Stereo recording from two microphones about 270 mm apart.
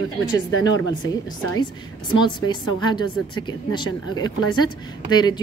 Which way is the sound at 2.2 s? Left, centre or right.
Centre.